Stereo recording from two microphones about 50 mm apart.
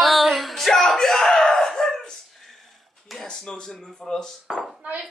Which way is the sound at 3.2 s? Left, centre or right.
Centre.